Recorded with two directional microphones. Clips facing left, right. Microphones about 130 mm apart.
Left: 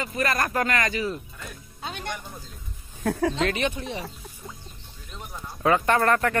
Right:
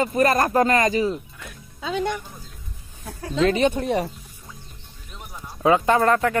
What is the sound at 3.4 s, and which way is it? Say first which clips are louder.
Speech: right 11 dB; 30° right (ahead or behind).